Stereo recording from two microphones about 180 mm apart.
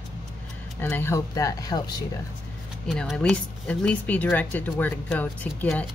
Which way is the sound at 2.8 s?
Centre (ahead or behind).